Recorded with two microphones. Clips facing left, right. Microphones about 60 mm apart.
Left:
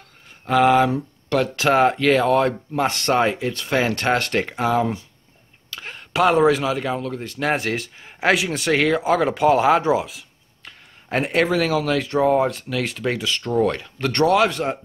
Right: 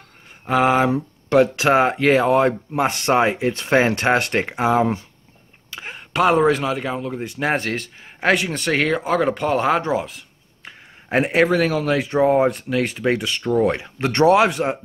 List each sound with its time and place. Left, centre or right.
0.5 s speech: centre
3.4 s speech: right
3.9 s speech: centre
5.7 s a sound: centre
6.1 s speech: centre
7.1 s speech: centre
7.5 s speech: centre
10.6 s speech: centre